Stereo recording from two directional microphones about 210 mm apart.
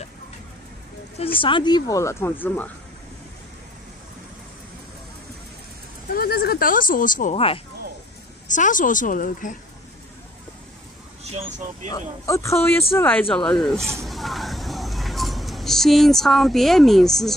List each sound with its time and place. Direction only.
1.1 s speech: 25° left (ahead or behind); by 2.7 s 10° left (ahead or behind)
6.1 s speech: 45° left (ahead or behind); by 7.6 s 25° left (ahead or behind)
8.5 s speech: 35° left (ahead or behind)
11.3 s speech: 35° right (ahead or behind)
12.3 s speech: 15° left (ahead or behind)
14.0 s vehicle: centre (ahead or behind)